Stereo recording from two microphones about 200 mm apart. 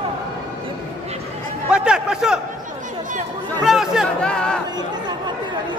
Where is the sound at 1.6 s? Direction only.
5° right (ahead or behind).